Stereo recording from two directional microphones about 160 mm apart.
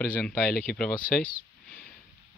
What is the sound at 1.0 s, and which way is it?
Speech, 60° left (ahead or behind).